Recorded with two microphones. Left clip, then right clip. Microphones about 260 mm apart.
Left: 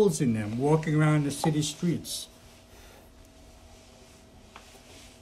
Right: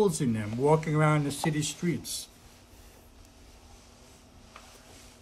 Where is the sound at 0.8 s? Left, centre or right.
Right.